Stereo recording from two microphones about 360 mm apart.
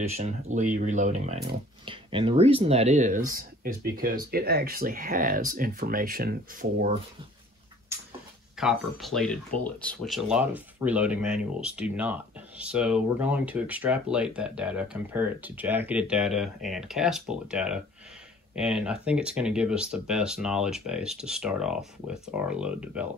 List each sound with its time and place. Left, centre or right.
0.0 s speech: centre
7.9 s a sound: centre
8.5 s speech: centre